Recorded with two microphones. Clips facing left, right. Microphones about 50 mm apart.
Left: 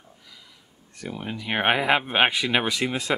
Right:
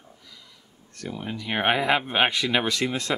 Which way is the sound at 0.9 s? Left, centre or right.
Centre.